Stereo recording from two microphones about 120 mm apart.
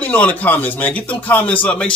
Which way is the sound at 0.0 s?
10° left (ahead or behind).